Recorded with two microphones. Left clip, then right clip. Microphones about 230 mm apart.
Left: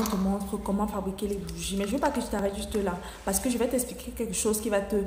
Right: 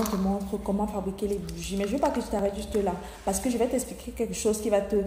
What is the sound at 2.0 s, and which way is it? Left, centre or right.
A woman's voice, centre.